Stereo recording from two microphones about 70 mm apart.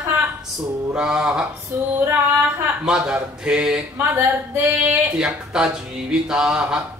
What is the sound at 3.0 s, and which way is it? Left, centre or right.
Speech, centre.